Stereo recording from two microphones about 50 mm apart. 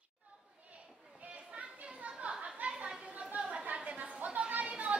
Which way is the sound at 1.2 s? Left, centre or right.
Right.